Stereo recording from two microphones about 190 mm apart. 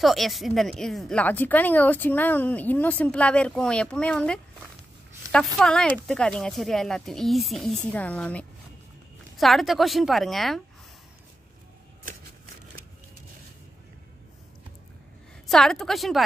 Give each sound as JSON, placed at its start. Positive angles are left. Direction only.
{"t": 0.0, "sound": "speech", "side_deg": 0}
{"t": 15.4, "sound": "speech", "side_deg": 0}